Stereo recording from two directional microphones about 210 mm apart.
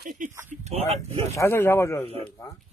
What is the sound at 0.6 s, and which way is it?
Speech, 30° right (ahead or behind).